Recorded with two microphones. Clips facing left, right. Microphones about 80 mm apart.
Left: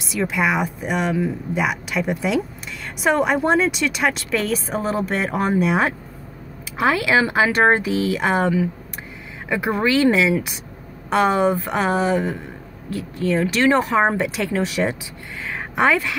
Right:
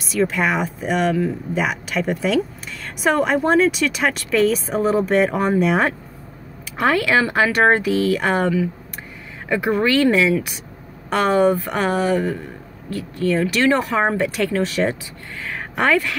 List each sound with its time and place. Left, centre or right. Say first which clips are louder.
0.1 s speech: right 1 dB; centre